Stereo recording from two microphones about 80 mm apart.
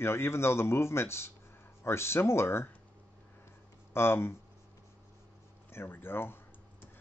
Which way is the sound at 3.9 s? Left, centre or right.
Left.